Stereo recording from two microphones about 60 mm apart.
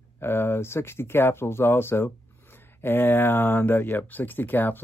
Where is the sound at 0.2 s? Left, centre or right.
Left.